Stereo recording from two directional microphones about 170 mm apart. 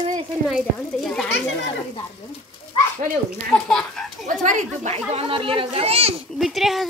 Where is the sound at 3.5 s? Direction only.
5° left (ahead or behind).